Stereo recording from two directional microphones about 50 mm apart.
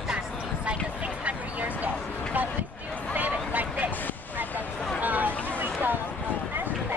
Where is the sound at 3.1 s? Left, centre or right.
Right.